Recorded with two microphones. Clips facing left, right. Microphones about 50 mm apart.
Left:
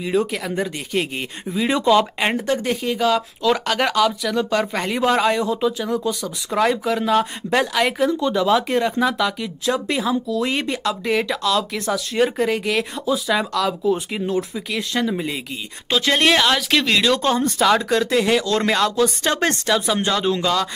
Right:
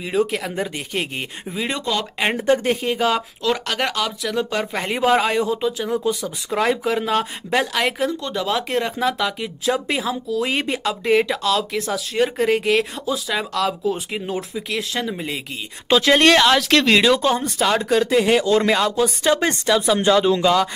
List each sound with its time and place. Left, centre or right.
0.0 s speech: centre
1.7 s speech: centre
2.1 s speech: centre
2.4 s speech: centre
3.4 s speech: centre
16.9 s speech: centre
20.4 s speech: centre